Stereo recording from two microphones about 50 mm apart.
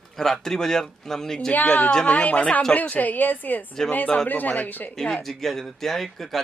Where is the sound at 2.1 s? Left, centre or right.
Left.